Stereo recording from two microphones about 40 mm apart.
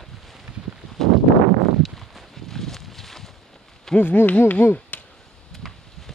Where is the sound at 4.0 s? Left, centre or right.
Left.